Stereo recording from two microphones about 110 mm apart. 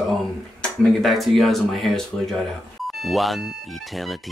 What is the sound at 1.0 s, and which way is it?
A man's voice, centre (ahead or behind).